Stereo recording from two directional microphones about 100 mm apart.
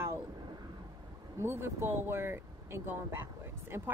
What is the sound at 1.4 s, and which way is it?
Speech, 25° right (ahead or behind).